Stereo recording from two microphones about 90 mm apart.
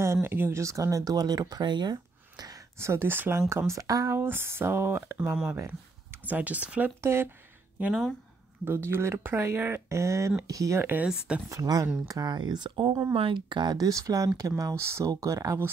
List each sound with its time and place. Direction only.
0.0 s speech: 30° right (ahead or behind); by 2.5 s 50° right (ahead or behind)
2.8 s speech: 30° right (ahead or behind)
7.0 s speech: 30° right (ahead or behind)
8.6 s speech: 30° right (ahead or behind)
10.8 s speech: 20° right (ahead or behind)
11.4 s speech: 40° right (ahead or behind); by 12.9 s 65° right (ahead or behind)
13.1 s speech: 75° right (ahead or behind); by 15.7 s 35° right (ahead or behind)